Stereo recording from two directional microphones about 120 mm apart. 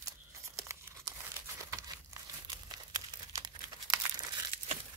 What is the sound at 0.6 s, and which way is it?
Crumpling, 25° right (ahead or behind).